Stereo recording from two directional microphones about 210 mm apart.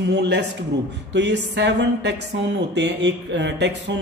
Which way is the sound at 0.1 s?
55° right (ahead or behind).